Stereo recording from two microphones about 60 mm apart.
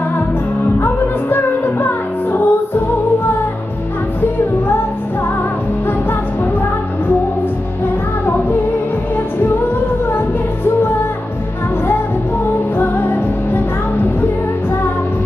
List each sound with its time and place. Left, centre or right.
0.7 s music: left
12.7 s music: left